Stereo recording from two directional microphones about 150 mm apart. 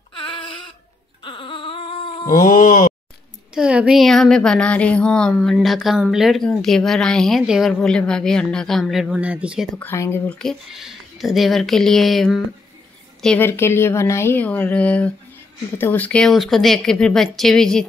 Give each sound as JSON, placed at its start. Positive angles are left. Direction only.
{"t": 0.1, "sound": "a sound", "side_deg": 35}
{"t": 2.2, "sound": "speech", "side_deg": 60}
{"t": 3.5, "sound": "speech", "side_deg": -5}
{"t": 9.8, "sound": "a woman's voice", "side_deg": 15}
{"t": 10.4, "sound": "a woman's voice", "side_deg": 0}